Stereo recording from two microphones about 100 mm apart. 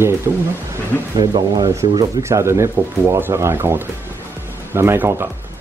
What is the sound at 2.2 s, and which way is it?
Speech, 25° right (ahead or behind).